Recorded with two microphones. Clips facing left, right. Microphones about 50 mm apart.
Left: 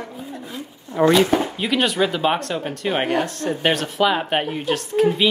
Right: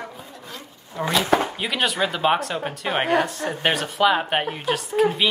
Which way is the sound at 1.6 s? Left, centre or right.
Centre.